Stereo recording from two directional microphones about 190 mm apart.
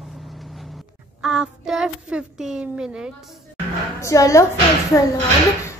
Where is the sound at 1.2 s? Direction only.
5° right (ahead or behind).